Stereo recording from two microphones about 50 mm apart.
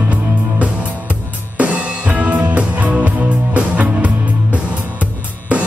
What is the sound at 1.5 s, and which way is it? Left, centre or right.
Music, right.